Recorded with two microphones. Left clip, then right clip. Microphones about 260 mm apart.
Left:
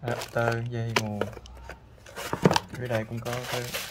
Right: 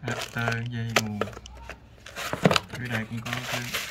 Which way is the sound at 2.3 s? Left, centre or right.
Centre.